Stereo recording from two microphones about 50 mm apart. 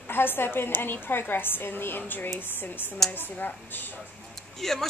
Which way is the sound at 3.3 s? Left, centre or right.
Left.